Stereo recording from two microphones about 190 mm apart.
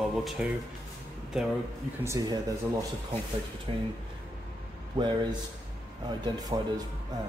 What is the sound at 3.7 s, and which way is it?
Speech, 25° right (ahead or behind).